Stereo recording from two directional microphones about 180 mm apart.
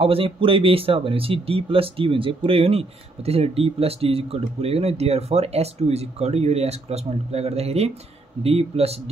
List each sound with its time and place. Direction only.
0.0 s speech: 30° right (ahead or behind)